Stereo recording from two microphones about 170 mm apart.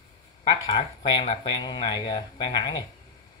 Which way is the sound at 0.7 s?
30° left (ahead or behind).